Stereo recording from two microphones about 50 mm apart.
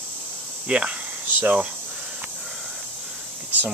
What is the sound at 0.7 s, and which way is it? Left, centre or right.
Speech, right.